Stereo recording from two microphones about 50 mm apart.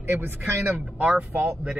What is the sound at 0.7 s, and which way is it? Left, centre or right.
Speech, right.